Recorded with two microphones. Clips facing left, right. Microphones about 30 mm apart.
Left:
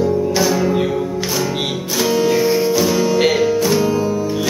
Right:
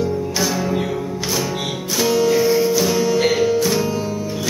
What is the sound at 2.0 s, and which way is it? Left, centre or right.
Music, centre.